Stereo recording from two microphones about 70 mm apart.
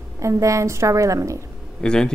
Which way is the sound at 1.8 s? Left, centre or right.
Centre.